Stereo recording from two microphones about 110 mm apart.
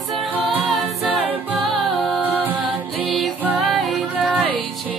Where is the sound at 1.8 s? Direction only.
Centre (ahead or behind).